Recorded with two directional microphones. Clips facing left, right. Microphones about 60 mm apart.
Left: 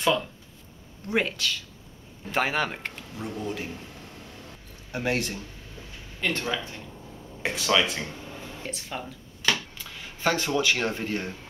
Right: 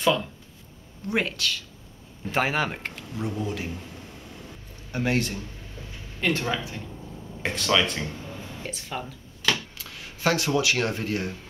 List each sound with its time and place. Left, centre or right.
0.0 s a man's voice: centre
6.2 s speech: centre
7.4 s speech: centre